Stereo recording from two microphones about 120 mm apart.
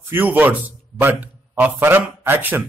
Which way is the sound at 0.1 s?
15° right (ahead or behind).